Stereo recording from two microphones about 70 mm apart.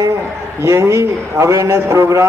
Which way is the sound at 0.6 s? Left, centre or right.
Right.